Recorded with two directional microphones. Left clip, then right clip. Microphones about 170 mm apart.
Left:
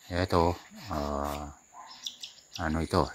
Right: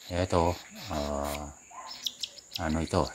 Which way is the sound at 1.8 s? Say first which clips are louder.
Right 5 dB; 20° right (ahead or behind).